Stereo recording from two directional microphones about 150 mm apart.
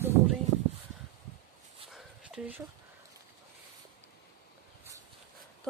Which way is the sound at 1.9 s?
5° right (ahead or behind).